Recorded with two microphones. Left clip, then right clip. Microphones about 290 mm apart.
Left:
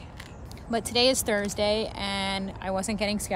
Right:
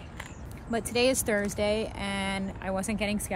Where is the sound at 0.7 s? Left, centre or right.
Centre.